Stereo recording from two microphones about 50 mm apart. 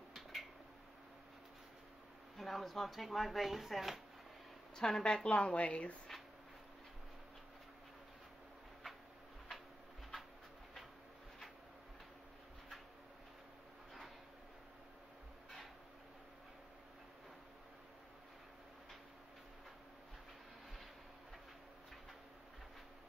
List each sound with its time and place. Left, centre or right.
0.1 s a sound: centre
2.3 s speech: centre
4.7 s a woman's voice: centre